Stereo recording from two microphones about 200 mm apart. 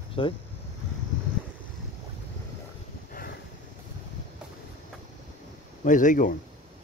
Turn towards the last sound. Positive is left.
turn(degrees=40)  # may be behind; listen again after turning